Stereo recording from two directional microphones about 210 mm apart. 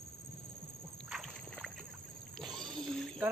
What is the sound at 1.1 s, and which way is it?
Rowboat, centre (ahead or behind).